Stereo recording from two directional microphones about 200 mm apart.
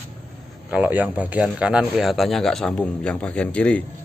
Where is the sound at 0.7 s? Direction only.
10° right (ahead or behind).